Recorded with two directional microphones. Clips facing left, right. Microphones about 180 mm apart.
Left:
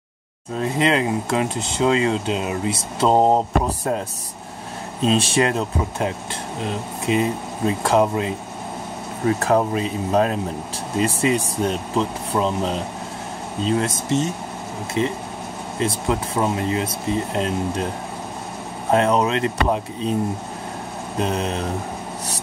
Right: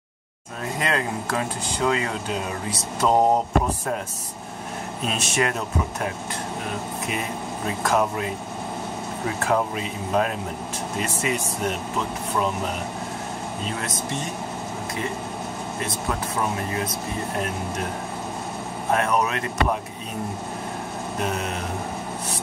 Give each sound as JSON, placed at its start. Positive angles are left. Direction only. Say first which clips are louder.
{"t": 0.6, "sound": "speech", "louder": "left 6 dB", "side_deg": 25}
{"t": 3.6, "sound": "speech", "louder": "left 3 dB", "side_deg": 35}
{"t": 5.0, "sound": "speech", "louder": "left 7 dB", "side_deg": 30}
{"t": 9.5, "sound": "speech", "louder": "left 2 dB", "side_deg": 35}
{"t": 15.0, "sound": "speech", "louder": "left 9 dB", "side_deg": 25}
{"t": 18.9, "sound": "speech", "louder": "left 5 dB", "side_deg": 25}
{"t": 21.2, "sound": "speech", "louder": "left 5 dB", "side_deg": 30}